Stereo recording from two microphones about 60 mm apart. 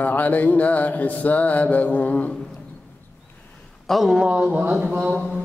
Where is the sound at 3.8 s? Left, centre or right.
Centre.